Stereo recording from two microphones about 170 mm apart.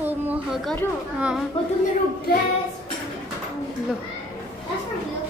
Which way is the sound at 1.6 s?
30° left (ahead or behind).